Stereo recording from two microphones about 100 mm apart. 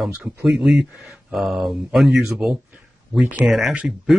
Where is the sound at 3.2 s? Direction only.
10° right (ahead or behind).